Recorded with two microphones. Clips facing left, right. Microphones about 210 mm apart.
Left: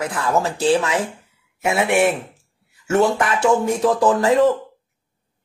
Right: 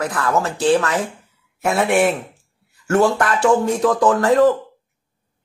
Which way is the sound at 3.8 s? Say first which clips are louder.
Even; 30° left (ahead or behind).